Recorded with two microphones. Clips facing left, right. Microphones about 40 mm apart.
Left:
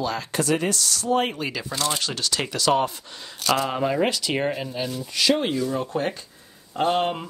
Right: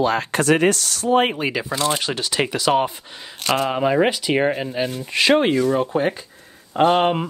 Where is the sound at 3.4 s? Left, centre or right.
Right.